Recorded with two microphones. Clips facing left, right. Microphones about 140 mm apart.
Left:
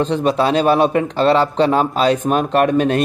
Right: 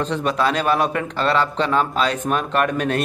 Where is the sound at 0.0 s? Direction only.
30° left (ahead or behind).